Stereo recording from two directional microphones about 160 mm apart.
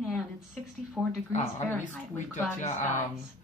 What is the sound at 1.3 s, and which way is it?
Speech, 45° left (ahead or behind).